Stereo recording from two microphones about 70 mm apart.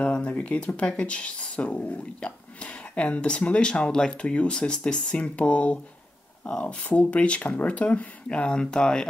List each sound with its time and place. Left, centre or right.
0.0 s speech: centre